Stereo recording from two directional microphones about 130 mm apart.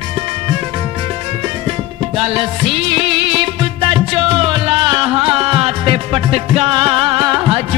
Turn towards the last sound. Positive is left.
turn(degrees=-40)  # may be behind; listen again after turning